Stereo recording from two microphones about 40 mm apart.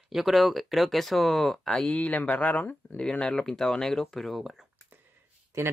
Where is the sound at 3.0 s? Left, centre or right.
Left; by 4.6 s centre.